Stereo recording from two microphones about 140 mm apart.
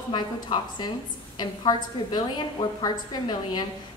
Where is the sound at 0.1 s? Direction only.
30° left (ahead or behind).